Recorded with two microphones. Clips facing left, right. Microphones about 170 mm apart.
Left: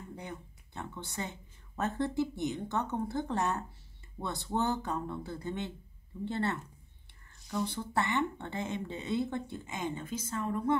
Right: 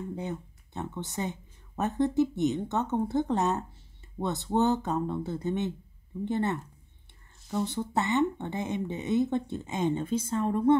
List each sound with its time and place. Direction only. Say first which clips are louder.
0.1 s speech: right 8 dB; 20° right (ahead or behind)